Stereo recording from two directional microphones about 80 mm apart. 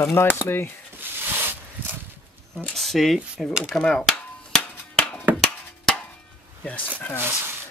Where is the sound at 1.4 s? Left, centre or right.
Right.